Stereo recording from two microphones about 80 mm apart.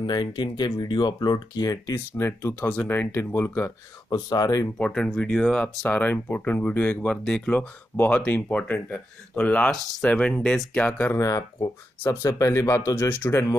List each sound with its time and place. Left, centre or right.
0.0 s speech: left
2.1 s speech: left
4.1 s speech: left
4.7 s speech: centre
7.9 s speech: left
8.3 s speech: left
11.1 s speech: left